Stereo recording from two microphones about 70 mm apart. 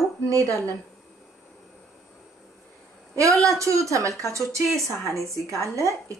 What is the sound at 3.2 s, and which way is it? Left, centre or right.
Speech, right.